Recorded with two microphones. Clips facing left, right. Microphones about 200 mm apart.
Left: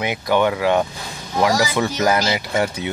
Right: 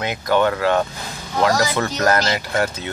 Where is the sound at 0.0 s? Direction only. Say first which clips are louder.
Even; 15° left (ahead or behind).